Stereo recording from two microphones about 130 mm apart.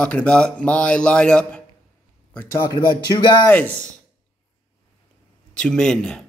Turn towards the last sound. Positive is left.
turn(degrees=5)  # may be behind; listen again after turning